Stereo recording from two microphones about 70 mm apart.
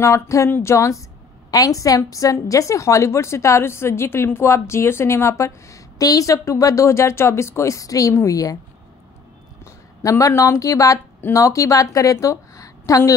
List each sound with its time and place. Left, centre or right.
0.0 s a woman's voice: left
1.5 s a woman's voice: left
10.0 s a woman's voice: left